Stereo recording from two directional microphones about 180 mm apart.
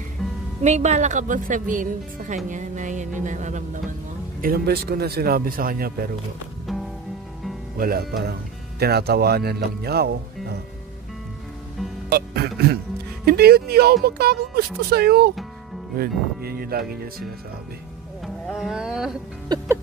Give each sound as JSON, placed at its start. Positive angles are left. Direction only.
{"t": 0.2, "sound": "music", "side_deg": 0}
{"t": 0.7, "sound": "a woman's voice", "side_deg": -40}
{"t": 4.4, "sound": "speech", "side_deg": -55}
{"t": 6.7, "sound": "music", "side_deg": 0}
{"t": 7.7, "sound": "speech", "side_deg": -55}
{"t": 12.1, "sound": "speech", "side_deg": -60}
{"t": 18.2, "sound": "a sound", "side_deg": -5}